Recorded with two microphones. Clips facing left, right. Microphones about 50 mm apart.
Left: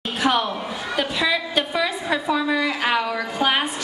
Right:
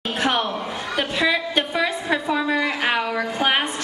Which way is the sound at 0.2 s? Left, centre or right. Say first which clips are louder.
Left 2 dB; centre.